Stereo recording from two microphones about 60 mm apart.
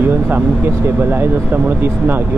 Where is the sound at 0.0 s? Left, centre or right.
Right.